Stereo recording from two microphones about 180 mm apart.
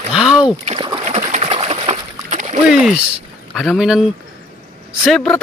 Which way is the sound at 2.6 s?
5° right (ahead or behind).